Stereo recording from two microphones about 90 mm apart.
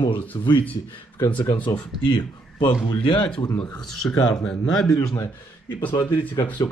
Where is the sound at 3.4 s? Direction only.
50° left (ahead or behind).